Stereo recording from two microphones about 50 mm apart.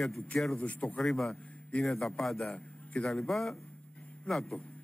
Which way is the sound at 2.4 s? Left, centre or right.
Left.